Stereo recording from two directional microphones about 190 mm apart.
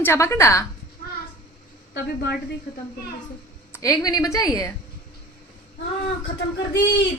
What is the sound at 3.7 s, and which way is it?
A woman's voice, 20° left (ahead or behind).